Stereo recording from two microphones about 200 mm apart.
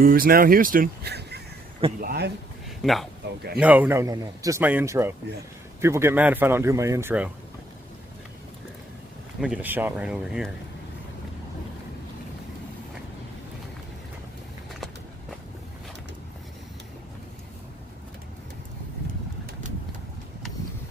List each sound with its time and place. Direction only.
0.0 s speech: 45° right (ahead or behind)
2.6 s a sound: centre (ahead or behind)
3.5 s a man's voice: 5° right (ahead or behind)
9.4 s speech: 5° right (ahead or behind)